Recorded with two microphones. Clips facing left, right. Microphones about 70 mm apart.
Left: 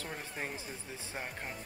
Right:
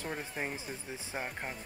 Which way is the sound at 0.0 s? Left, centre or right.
Centre.